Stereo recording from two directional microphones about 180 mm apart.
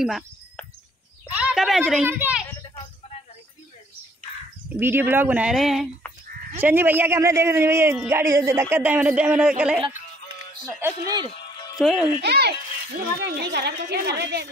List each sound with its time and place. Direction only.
0.0 s a man's voice: centre (ahead or behind)
4.7 s a man's voice: 10° right (ahead or behind)
10.8 s speech: 20° right (ahead or behind)
11.8 s speech: centre (ahead or behind)
12.2 s a woman's voice: 65° right (ahead or behind)